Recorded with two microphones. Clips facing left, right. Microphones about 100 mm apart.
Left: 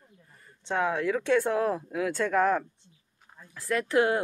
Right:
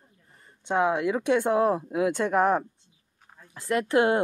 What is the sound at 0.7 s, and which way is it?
Speech, 15° right (ahead or behind).